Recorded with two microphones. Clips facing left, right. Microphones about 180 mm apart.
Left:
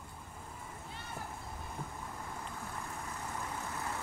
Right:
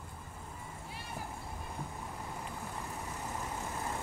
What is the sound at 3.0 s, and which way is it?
Vehicle, 20° right (ahead or behind).